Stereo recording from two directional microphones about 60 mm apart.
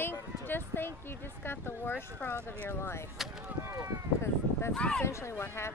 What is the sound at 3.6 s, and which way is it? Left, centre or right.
Run, right.